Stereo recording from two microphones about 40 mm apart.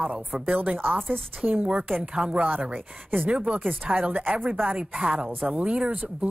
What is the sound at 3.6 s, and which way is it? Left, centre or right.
Speech, right.